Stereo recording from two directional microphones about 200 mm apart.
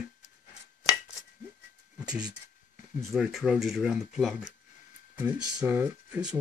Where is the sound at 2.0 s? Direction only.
5° right (ahead or behind).